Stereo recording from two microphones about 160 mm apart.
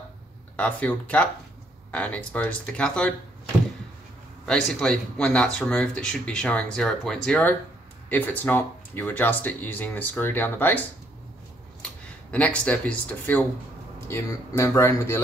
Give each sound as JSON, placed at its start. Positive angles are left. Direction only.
{"t": 0.6, "sound": "speech", "side_deg": 10}
{"t": 4.5, "sound": "speech", "side_deg": 5}
{"t": 11.8, "sound": "speech", "side_deg": 10}